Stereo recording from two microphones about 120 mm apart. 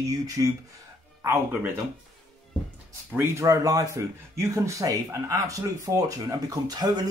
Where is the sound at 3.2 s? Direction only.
25° right (ahead or behind).